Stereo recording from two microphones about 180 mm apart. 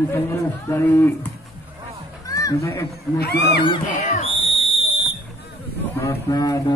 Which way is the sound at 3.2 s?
60° left (ahead or behind).